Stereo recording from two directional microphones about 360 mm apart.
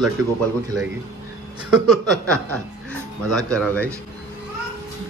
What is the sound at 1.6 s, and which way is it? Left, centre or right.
Speech, centre.